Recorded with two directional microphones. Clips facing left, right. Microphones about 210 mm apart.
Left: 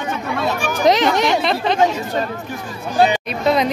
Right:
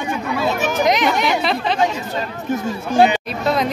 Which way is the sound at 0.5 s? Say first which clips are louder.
Right 3 dB; 20° right (ahead or behind).